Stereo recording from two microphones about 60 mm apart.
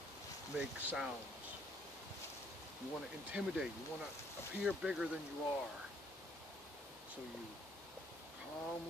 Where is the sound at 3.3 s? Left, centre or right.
Centre.